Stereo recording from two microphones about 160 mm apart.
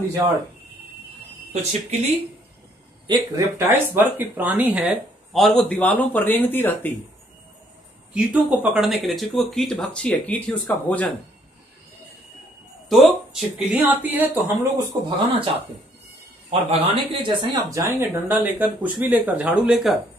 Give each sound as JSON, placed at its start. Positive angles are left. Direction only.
{"t": 1.5, "sound": "speech", "side_deg": -45}
{"t": 3.1, "sound": "speech", "side_deg": -20}
{"t": 8.1, "sound": "speech", "side_deg": -5}
{"t": 12.8, "sound": "speech", "side_deg": 0}
{"t": 16.4, "sound": "speech", "side_deg": -35}
{"t": 18.0, "sound": "speech", "side_deg": -15}